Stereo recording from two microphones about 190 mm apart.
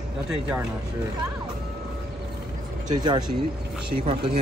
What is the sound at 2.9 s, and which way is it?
Speech, 20° right (ahead or behind).